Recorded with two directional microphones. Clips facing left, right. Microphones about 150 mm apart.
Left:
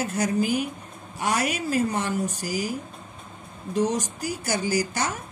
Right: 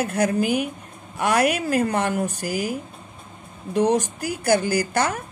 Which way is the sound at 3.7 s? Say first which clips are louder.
Right 5 dB; 60° right (ahead or behind).